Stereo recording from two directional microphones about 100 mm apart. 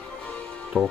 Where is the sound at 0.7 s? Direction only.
15° right (ahead or behind).